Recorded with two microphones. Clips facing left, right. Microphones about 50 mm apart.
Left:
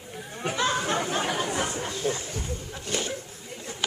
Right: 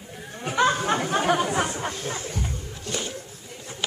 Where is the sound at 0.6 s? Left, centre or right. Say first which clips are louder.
Right 6 dB; right.